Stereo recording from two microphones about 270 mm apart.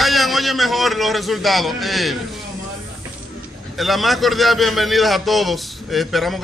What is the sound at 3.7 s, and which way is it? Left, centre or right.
A man's voice, centre.